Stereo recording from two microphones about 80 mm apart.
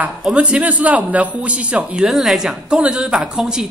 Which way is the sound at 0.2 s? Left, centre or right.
Centre.